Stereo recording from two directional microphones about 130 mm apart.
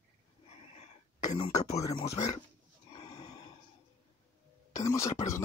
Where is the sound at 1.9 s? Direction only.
50° left (ahead or behind).